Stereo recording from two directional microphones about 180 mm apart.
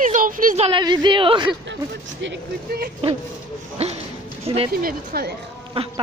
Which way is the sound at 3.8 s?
35° right (ahead or behind).